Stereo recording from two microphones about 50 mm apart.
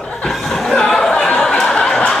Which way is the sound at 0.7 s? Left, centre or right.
Centre.